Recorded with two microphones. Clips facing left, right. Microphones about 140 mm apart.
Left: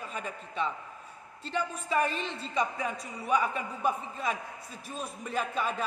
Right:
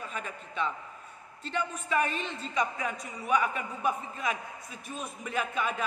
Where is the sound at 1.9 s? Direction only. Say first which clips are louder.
Left 1 dB; centre (ahead or behind).